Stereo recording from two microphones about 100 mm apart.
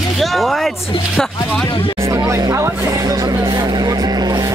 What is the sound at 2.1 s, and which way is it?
Speech, 35° right (ahead or behind).